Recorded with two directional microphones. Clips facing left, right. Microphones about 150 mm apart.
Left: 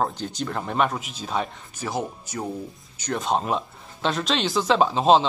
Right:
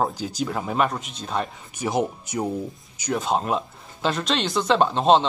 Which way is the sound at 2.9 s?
5° right (ahead or behind).